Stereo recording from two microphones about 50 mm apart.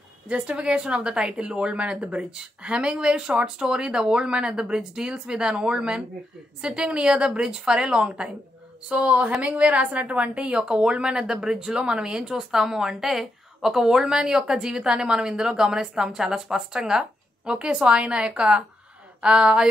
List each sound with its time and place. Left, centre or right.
0.3 s a woman's voice: right